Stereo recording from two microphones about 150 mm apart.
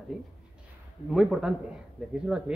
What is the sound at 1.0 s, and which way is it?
Speech, 5° right (ahead or behind).